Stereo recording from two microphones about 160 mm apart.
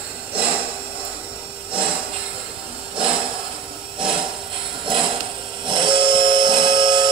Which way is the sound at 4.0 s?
30° right (ahead or behind).